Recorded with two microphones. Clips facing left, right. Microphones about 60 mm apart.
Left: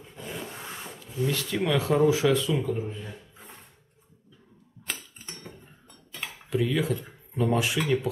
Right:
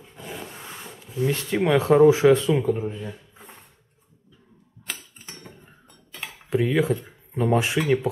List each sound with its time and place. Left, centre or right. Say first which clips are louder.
0.0 s roar: right 1 dB; centre
1.2 s speech: right 4 dB; right
4.9 s a sound: even; centre
5.2 s cutlery: even; centre
5.9 s cutlery: right 1 dB; centre
6.5 s speech: right 5 dB; right